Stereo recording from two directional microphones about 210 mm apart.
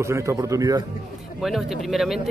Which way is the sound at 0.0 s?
15° right (ahead or behind).